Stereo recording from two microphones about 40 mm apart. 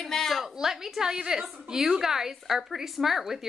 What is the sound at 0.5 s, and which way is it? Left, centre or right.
A woman's voice, centre.